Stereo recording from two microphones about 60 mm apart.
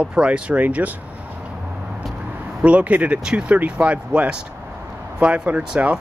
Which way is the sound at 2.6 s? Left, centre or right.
Right.